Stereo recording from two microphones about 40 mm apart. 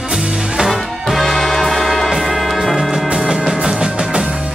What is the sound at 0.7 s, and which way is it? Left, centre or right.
Music, centre.